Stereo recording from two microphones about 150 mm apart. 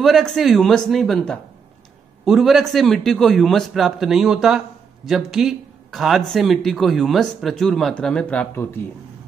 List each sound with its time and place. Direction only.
0.0 s a man's voice: centre (ahead or behind)